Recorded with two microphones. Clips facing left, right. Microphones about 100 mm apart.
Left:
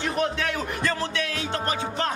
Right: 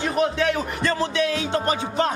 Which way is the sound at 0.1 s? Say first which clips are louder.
Right 5 dB; 10° right (ahead or behind).